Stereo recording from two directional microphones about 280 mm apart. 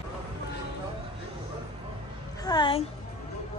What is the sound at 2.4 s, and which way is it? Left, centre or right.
Speech, centre.